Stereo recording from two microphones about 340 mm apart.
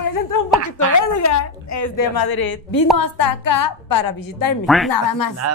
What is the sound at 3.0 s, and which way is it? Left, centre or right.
A woman's voice, left.